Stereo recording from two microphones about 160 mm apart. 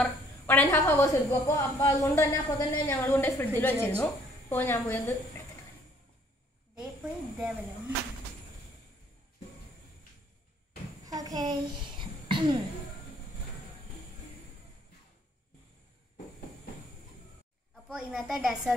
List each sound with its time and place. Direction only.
0.0 s a woman's voice: 10° left (ahead or behind)
6.7 s snake: 5° right (ahead or behind)
11.1 s a sound: 25° right (ahead or behind)
17.8 s a woman's voice: centre (ahead or behind)